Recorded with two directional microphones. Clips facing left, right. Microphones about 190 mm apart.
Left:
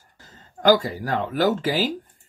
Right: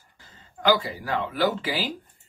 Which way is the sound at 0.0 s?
45° left (ahead or behind).